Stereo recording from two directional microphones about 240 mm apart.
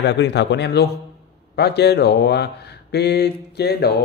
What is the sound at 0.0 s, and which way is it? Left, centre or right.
Speech, left.